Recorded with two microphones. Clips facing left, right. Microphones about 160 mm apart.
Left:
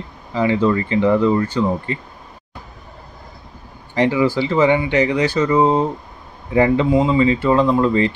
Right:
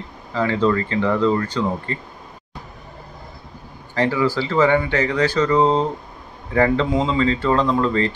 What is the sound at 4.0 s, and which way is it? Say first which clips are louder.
Speech: left 3 dB; 15° left (ahead or behind).